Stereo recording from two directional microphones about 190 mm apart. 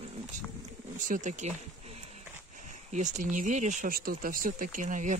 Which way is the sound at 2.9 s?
40° right (ahead or behind).